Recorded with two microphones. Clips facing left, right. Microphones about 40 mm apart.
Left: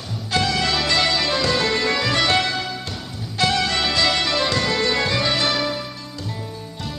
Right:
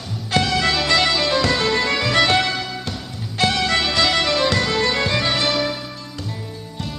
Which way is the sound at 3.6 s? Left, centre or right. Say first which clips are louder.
Right 2 dB; right.